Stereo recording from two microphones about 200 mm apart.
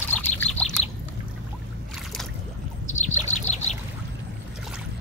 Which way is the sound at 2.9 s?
35° left (ahead or behind).